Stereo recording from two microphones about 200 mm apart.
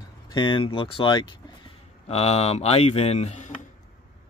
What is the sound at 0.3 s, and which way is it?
Speech, 25° left (ahead or behind).